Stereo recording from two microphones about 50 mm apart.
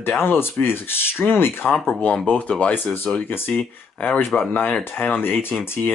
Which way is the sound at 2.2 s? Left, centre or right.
Left.